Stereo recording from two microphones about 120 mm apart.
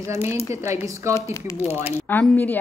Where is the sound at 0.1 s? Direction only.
25° right (ahead or behind).